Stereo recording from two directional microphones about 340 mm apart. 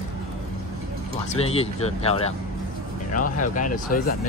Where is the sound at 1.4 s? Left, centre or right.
Centre.